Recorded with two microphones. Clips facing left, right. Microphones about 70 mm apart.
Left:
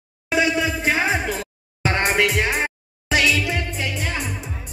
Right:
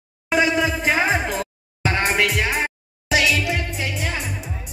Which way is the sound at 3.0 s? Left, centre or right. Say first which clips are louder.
Even; centre.